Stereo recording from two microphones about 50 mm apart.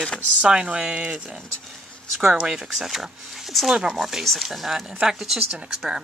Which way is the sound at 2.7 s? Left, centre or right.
Centre.